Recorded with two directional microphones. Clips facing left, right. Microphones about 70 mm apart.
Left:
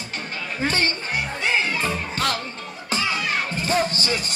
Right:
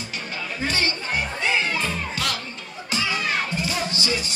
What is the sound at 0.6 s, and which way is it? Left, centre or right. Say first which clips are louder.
Music: left 2 dB; left.